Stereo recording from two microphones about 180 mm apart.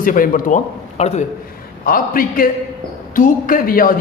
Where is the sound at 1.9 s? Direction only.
50° left (ahead or behind).